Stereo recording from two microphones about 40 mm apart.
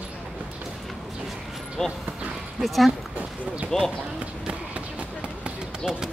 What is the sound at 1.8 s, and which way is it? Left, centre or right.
Speech, centre.